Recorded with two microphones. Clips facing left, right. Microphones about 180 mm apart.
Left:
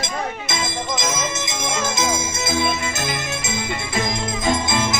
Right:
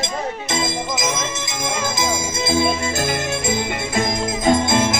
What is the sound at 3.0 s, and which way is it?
Music, 45° right (ahead or behind).